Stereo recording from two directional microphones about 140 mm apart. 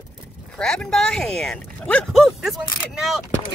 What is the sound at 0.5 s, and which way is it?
Speech, 5° left (ahead or behind).